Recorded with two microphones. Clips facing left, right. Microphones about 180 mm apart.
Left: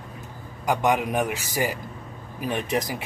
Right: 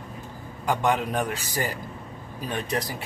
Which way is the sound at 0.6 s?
10° left (ahead or behind).